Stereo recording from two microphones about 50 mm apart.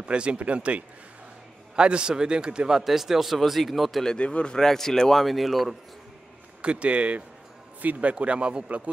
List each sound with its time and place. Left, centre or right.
0.0 s a man's voice: right
2.8 s speech: centre
4.0 s speech: centre
4.6 s speech: centre
6.6 s speech: right